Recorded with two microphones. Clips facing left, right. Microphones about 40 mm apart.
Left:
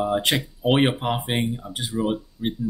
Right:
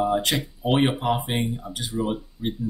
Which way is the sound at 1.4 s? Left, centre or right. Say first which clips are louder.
Left 1 dB; centre.